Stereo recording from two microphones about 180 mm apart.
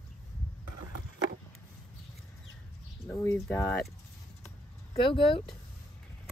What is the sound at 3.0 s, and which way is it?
Speech, 15° left (ahead or behind).